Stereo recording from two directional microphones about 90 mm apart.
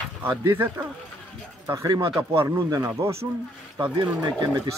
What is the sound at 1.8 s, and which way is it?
Speech, 45° right (ahead or behind).